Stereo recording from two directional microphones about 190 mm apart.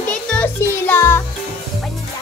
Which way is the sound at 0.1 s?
5° left (ahead or behind).